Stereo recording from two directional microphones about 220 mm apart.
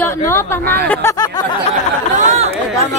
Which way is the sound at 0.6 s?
45° right (ahead or behind).